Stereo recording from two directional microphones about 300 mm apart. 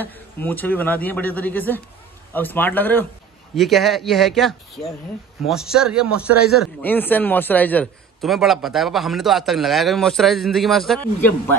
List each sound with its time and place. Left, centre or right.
0.0 s a man's voice: centre